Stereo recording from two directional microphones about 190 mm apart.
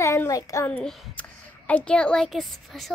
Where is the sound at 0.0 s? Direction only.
15° left (ahead or behind).